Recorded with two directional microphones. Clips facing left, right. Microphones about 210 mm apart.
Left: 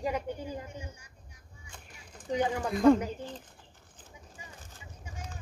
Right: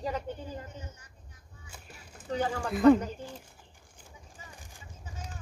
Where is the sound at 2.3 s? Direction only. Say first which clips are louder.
Left 2 dB; 15° left (ahead or behind).